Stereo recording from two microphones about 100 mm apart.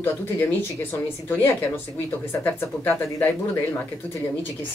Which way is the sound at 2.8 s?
20° left (ahead or behind).